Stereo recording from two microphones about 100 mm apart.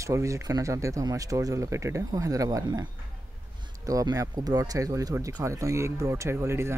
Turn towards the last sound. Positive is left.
turn(degrees=-25)  # may be behind; listen again after turning